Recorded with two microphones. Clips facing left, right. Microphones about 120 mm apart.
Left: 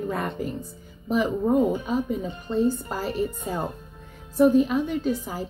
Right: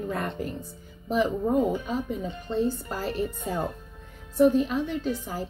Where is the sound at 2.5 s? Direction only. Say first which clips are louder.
Left 4 dB; 45° left (ahead or behind).